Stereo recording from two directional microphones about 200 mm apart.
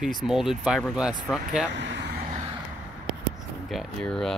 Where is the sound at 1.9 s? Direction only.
55° right (ahead or behind).